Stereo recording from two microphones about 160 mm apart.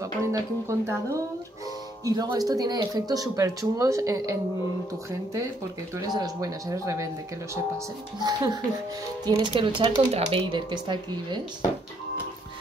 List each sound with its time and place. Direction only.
0.2 s speech: 20° right (ahead or behind)
5.9 s speech: 25° right (ahead or behind)